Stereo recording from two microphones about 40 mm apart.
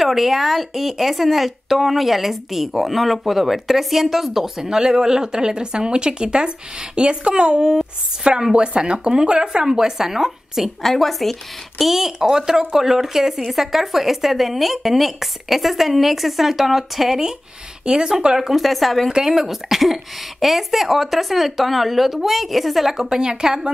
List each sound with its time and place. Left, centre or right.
0.0 s speech: centre
10.8 s speech: centre
11.8 s speech: centre
17.8 s speech: centre
18.5 s speech: centre
19.0 s speech: centre